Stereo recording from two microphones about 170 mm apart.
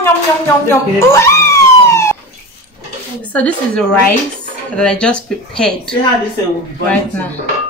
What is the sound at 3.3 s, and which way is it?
Speech, 5° left (ahead or behind).